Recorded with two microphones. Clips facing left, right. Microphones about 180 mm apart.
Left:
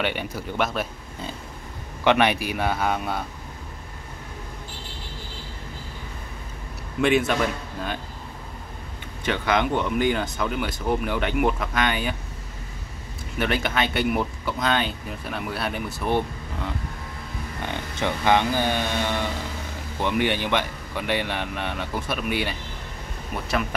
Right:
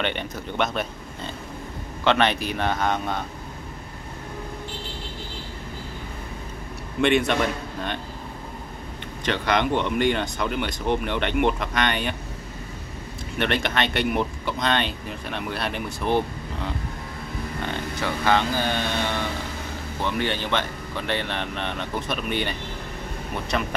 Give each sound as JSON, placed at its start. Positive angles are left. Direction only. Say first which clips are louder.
{"t": 0.0, "sound": "speech", "louder": "left 1 dB", "side_deg": 10}
{"t": 7.0, "sound": "speech", "louder": "even", "side_deg": 5}
{"t": 9.2, "sound": "speech", "louder": "even", "side_deg": 5}
{"t": 13.4, "sound": "speech", "louder": "even", "side_deg": 5}
{"t": 17.6, "sound": "speech", "louder": "left 1 dB", "side_deg": 15}
{"t": 20.0, "sound": "speech", "louder": "left 3 dB", "side_deg": 15}